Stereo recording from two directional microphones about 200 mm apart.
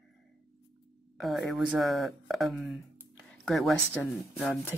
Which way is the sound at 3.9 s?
5° left (ahead or behind).